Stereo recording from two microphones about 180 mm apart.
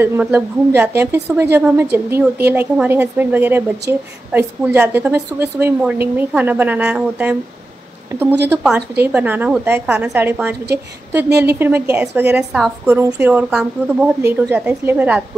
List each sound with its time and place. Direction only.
0.0 s a woman's voice: 10° right (ahead or behind)